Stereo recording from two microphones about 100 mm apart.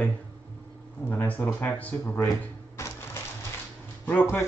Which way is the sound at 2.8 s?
30° left (ahead or behind).